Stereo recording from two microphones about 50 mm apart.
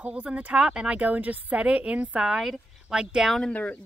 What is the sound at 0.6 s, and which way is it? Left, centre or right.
Speech, centre.